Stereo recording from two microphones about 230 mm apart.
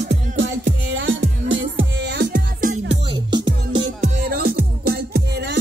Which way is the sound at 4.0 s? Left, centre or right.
Right.